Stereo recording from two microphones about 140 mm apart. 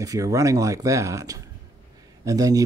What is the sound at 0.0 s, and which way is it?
Speech, 25° right (ahead or behind).